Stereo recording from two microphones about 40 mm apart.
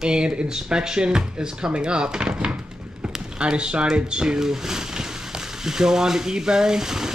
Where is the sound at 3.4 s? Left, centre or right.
Right.